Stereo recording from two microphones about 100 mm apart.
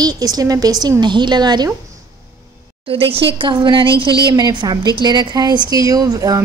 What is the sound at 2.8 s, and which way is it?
A woman's voice, 70° right (ahead or behind).